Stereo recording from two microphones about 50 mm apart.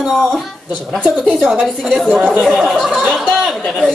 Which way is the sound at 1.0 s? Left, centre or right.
Centre.